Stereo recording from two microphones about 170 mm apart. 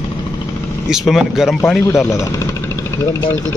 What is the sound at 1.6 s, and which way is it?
Speech, 15° left (ahead or behind).